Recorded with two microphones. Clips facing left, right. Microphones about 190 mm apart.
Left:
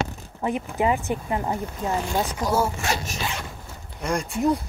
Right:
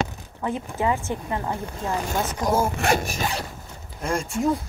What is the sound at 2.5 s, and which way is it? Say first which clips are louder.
Speech: right 3 dB; 50° right (ahead or behind).